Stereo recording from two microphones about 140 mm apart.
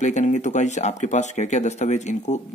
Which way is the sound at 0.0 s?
55° left (ahead or behind).